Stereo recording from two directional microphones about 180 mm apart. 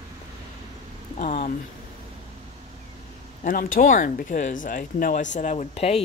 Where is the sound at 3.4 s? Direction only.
50° left (ahead or behind).